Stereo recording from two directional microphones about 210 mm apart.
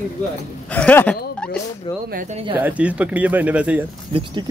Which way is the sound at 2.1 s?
35° right (ahead or behind).